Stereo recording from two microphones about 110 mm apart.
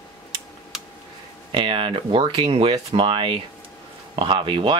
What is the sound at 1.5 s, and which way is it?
Speech, 50° right (ahead or behind).